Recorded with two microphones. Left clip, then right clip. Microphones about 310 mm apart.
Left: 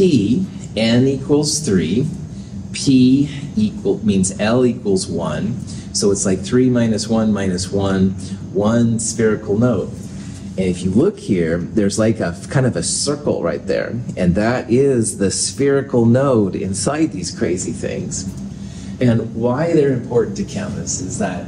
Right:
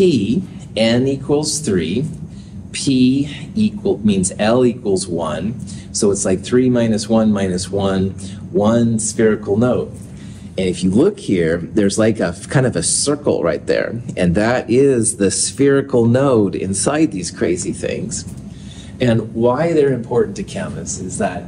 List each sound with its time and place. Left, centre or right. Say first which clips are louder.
0.7 s speech: right 1 dB; right